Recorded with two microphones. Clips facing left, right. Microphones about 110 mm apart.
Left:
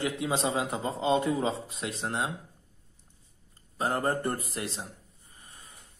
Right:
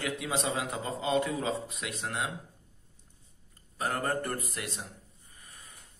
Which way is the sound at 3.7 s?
25° left (ahead or behind).